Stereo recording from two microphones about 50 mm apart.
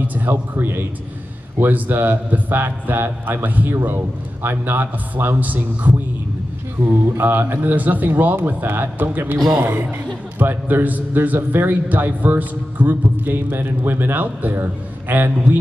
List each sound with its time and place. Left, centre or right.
0.0 s music: right
0.3 s a man's voice: right
6.8 s a man's voice: right
10.4 s a man's voice: right